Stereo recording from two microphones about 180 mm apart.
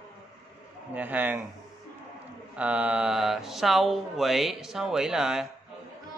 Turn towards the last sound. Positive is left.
turn(degrees=-5)  # may be behind; listen again after turning